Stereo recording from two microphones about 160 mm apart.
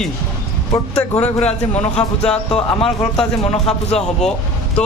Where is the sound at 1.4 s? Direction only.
40° left (ahead or behind).